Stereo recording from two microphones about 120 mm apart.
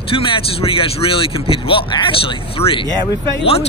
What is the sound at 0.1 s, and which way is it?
Speech, 50° left (ahead or behind).